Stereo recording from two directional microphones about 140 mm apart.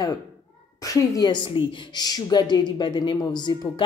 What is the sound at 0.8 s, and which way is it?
A woman's voice, 25° left (ahead or behind).